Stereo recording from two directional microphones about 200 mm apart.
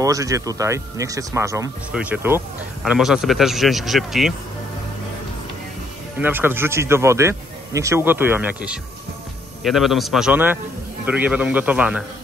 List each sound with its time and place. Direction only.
0.0 s speech: 15° right (ahead or behind); by 4.3 s centre (ahead or behind)
6.1 s speech: 10° right (ahead or behind)